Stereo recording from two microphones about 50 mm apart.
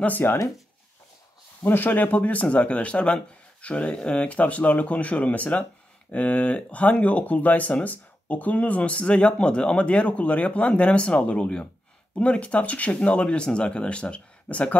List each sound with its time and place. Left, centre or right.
0.2 s speech: left
1.6 s speech: left